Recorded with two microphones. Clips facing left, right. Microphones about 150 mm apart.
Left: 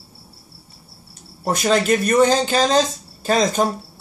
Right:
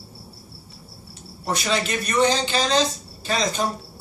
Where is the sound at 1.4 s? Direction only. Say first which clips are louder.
Left 6 dB; 45° left (ahead or behind).